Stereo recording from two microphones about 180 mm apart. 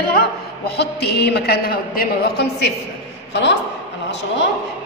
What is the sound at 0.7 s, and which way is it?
A man's voice, 65° left (ahead or behind).